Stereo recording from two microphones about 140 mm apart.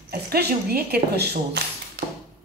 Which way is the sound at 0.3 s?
90° right.